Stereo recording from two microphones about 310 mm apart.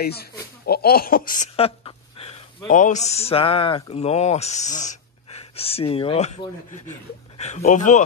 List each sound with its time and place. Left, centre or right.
0.0 s a woman's voice: left